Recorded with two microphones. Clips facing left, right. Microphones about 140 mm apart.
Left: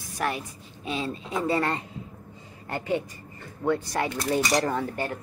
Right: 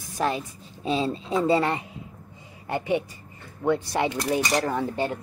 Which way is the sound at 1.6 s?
15° right (ahead or behind).